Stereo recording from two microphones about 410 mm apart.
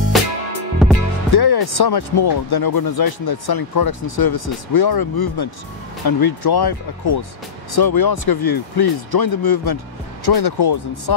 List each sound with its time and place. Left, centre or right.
0.1 s music: centre
1.3 s speech: left